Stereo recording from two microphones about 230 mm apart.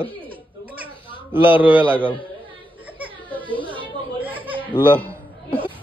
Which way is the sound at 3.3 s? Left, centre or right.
Centre.